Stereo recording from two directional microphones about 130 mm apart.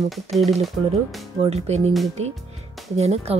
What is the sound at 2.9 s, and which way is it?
Speech, 55° right (ahead or behind).